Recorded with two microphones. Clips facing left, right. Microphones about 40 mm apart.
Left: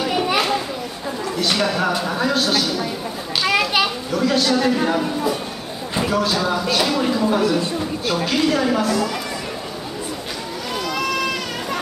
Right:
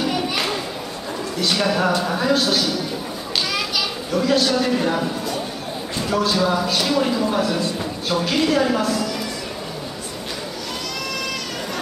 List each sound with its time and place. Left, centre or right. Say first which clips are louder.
0.0 s children playing: left 3 dB; centre
1.4 s a woman's voice: even; centre
3.4 s children playing: left 9 dB; left
4.1 s a woman's voice: right 2 dB; centre
11.1 s a sound: left 4 dB; centre